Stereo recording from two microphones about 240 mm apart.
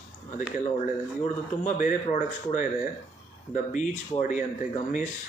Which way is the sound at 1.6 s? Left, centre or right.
Left.